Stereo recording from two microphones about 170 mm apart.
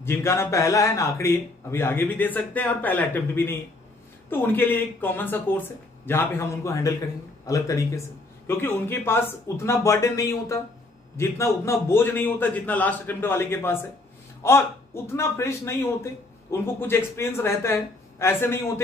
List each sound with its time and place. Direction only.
0.0 s a man's voice: 15° left (ahead or behind)